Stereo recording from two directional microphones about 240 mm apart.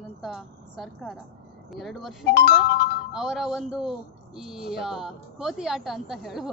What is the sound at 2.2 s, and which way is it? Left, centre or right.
Speech, left.